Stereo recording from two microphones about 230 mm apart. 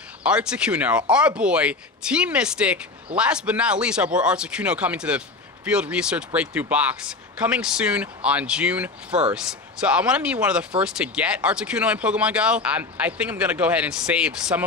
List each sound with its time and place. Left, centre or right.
0.2 s speech: centre